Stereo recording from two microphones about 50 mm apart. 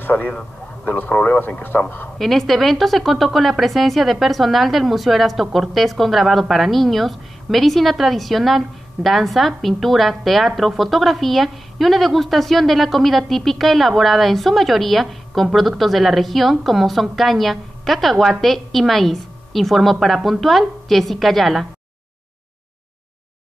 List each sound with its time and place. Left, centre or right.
0.8 s speech: left
2.1 s a woman's voice: centre